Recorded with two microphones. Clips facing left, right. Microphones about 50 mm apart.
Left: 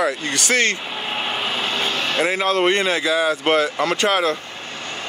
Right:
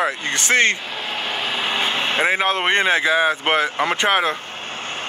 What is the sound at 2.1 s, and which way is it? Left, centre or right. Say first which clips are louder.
A man's voice: left 1 dB; right.